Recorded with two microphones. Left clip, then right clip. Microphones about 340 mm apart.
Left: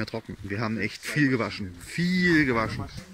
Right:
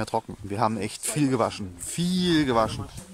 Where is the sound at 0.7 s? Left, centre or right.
Right.